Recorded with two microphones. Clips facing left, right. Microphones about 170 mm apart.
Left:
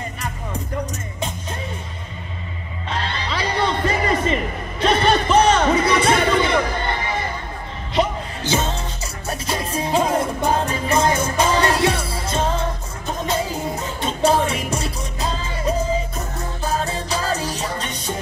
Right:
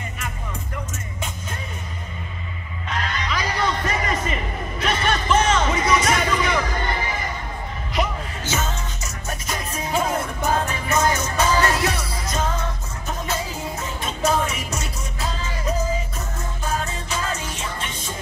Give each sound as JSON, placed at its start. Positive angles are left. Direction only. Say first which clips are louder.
{"t": 2.9, "sound": "music", "louder": "left 1 dB", "side_deg": 30}
{"t": 7.9, "sound": "music", "louder": "left 5 dB", "side_deg": 30}
{"t": 14.0, "sound": "music", "louder": "left 4 dB", "side_deg": 30}